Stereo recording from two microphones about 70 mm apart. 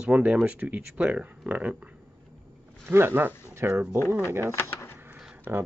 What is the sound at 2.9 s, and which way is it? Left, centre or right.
Speech, right.